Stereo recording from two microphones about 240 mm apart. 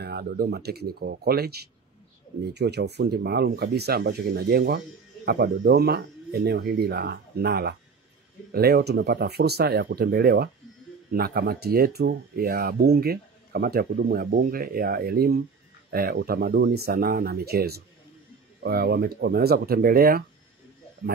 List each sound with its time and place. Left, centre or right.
0.0 s speech: right